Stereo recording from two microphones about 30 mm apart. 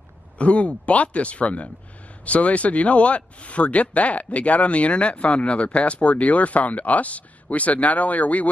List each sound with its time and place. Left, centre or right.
0.4 s speech: left